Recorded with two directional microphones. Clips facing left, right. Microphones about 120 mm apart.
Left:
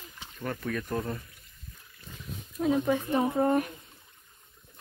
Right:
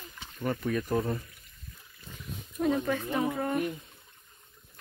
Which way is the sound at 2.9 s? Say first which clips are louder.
Left 3 dB; 15° left (ahead or behind).